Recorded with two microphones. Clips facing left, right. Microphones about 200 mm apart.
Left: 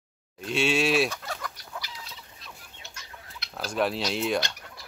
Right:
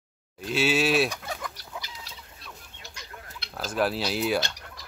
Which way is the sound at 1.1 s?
15° right (ahead or behind).